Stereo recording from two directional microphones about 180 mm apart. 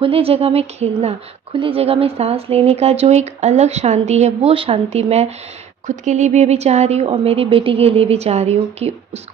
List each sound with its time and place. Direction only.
0.0 s a woman's voice: 30° right (ahead or behind)